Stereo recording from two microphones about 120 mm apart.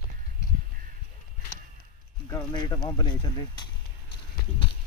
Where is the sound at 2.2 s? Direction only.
35° left (ahead or behind).